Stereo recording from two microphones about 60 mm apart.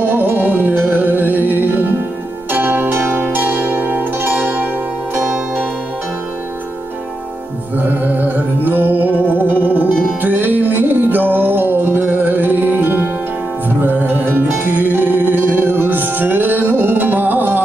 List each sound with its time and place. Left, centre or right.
0.0 s music: right
2.5 s zither: right
8.0 s music: right